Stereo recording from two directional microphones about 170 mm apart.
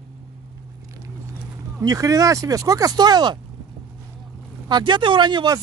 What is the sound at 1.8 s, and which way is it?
Speech, 20° right (ahead or behind).